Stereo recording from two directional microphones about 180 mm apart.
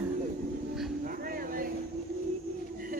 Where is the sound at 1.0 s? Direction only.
50° right (ahead or behind).